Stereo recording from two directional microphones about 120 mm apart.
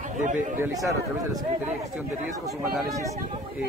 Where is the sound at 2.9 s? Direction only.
25° right (ahead or behind).